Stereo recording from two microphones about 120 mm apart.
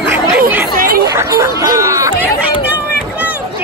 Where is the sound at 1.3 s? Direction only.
30° right (ahead or behind).